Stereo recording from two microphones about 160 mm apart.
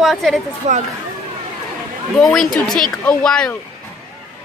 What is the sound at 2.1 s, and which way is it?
A woman's voice, centre (ahead or behind).